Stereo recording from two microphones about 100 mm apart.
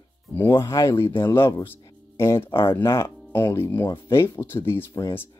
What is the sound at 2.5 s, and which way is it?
Speech, 50° left (ahead or behind).